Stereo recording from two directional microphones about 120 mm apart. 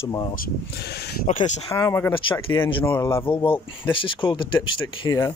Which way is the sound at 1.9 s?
20° left (ahead or behind).